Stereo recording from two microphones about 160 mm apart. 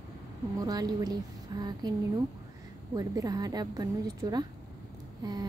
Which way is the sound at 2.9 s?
25° right (ahead or behind).